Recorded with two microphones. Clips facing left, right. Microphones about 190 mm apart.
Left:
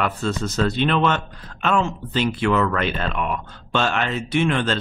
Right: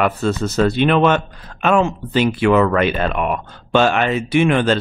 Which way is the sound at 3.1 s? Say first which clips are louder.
Right 5 dB; 55° right (ahead or behind).